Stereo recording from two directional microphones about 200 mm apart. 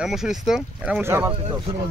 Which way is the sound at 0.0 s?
Centre (ahead or behind).